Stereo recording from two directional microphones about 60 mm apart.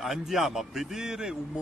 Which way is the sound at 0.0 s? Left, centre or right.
Centre.